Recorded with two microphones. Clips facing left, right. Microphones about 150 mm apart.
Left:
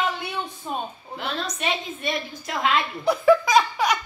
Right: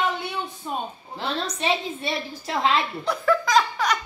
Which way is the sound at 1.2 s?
30° right (ahead or behind).